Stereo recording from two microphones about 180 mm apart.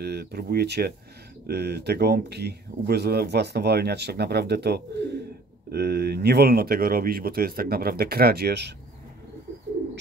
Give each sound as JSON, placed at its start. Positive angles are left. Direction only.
{"t": 0.0, "sound": "speech", "side_deg": -65}